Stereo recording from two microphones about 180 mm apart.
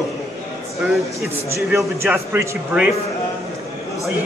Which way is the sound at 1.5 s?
15° right (ahead or behind).